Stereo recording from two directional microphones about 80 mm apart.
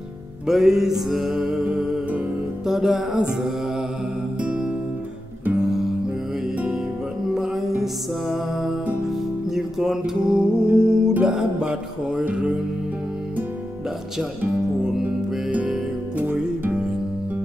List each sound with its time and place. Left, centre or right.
0.5 s music: centre
5.6 s music: centre
7.3 s music: centre
15.5 s music: centre